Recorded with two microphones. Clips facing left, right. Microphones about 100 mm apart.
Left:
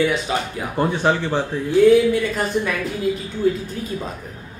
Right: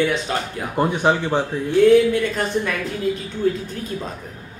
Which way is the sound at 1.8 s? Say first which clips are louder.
Even; 5° left (ahead or behind).